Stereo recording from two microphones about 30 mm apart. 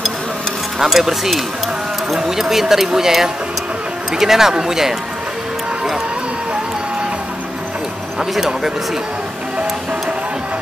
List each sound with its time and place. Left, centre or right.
0.7 s speech: centre
8.4 s speech: centre